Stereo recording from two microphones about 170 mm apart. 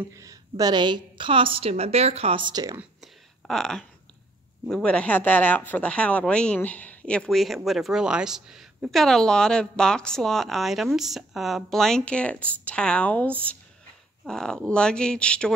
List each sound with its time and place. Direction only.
0.1 s a woman's voice: 20° right (ahead or behind)
2.8 s a sound: centre (ahead or behind)
4.6 s speech: 5° left (ahead or behind)